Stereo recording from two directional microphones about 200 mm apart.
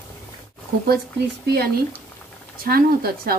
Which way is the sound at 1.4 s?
50° right (ahead or behind).